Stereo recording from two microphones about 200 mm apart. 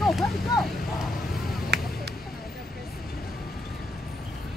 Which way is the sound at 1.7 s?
55° right (ahead or behind).